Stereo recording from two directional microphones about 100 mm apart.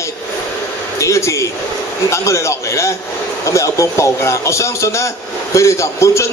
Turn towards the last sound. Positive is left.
turn(degrees=30)  # may be behind; listen again after turning